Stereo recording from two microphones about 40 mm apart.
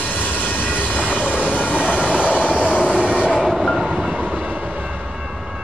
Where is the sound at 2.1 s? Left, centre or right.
Right.